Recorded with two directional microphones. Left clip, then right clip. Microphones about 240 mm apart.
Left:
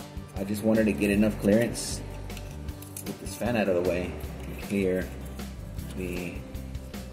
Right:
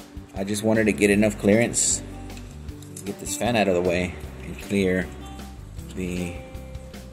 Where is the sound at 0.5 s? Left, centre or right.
Right.